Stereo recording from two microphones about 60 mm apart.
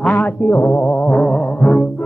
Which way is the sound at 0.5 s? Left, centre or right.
Left.